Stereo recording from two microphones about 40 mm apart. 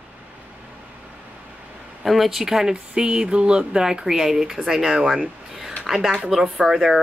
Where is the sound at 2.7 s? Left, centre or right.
Right.